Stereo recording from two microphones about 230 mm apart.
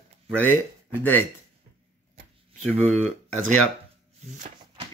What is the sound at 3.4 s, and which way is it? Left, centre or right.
Speech, left.